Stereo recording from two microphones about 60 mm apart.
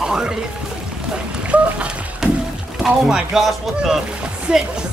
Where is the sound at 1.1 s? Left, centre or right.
Centre.